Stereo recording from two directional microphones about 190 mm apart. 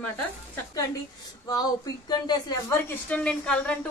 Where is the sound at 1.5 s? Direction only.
20° left (ahead or behind).